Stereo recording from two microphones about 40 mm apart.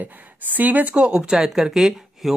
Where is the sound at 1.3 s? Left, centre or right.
Centre.